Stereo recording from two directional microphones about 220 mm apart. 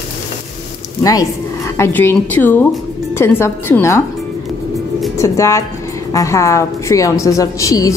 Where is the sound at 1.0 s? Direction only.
15° left (ahead or behind).